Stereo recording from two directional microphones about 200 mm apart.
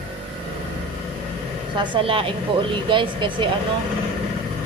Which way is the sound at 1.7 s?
25° right (ahead or behind).